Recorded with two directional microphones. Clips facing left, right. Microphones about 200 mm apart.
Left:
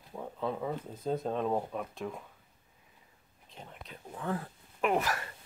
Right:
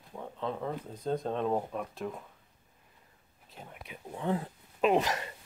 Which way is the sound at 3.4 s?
5° right (ahead or behind).